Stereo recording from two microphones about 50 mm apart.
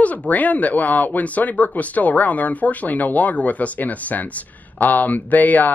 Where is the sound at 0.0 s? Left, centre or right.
Left.